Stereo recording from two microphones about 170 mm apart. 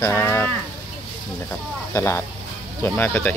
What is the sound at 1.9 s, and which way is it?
Speech, 15° left (ahead or behind).